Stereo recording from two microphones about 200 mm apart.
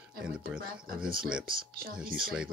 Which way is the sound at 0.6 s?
45° right (ahead or behind).